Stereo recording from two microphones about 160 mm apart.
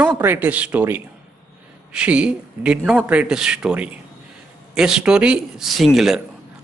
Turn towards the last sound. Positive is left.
turn(degrees=0)  # may be behind; listen again after turning